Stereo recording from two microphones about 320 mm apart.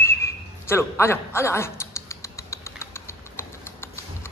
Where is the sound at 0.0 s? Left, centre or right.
Centre.